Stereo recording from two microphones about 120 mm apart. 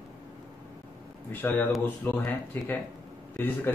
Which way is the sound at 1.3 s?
15° left (ahead or behind).